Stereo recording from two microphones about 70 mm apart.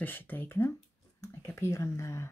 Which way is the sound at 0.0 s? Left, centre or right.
Left.